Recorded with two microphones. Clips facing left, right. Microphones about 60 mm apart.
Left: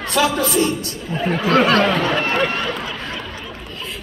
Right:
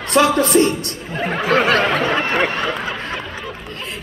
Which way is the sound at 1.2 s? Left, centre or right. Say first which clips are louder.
Left 1 dB; right.